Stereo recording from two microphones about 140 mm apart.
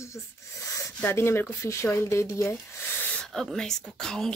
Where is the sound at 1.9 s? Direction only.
20° left (ahead or behind).